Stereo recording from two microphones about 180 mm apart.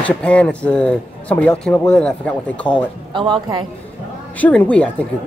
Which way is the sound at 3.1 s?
25° right (ahead or behind).